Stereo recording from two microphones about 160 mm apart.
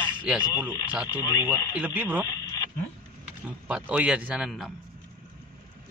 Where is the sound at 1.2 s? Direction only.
20° left (ahead or behind).